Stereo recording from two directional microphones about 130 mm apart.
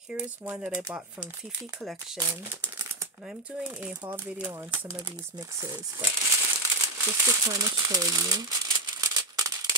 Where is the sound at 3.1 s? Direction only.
5° right (ahead or behind).